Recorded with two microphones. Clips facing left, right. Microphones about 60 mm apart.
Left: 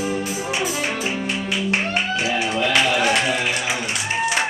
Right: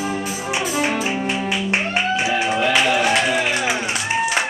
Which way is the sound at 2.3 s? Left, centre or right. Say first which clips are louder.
Right 1 dB; centre.